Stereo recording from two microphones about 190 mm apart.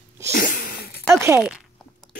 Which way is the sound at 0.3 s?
45° left (ahead or behind).